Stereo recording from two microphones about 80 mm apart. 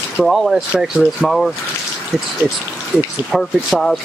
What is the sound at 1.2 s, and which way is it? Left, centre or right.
Speech, centre.